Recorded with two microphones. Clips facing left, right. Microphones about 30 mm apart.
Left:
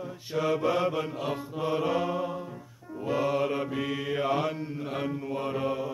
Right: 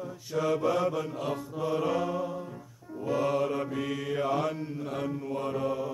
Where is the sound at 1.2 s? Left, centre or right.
Left.